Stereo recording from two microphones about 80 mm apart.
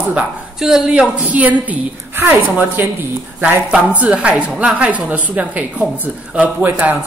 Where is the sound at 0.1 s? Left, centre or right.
Centre.